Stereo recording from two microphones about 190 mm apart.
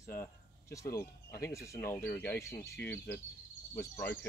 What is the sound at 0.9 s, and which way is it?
Speech, 50° left (ahead or behind).